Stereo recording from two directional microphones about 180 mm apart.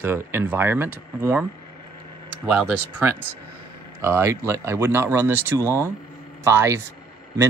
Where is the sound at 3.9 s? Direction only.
15° right (ahead or behind).